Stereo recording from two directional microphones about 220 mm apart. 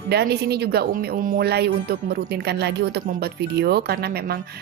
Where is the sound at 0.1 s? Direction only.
45° right (ahead or behind).